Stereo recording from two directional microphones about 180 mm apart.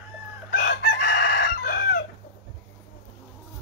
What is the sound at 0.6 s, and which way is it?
Chicken, 70° left (ahead or behind).